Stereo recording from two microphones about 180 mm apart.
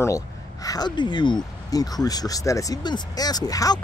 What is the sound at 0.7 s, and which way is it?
Speech, 25° left (ahead or behind).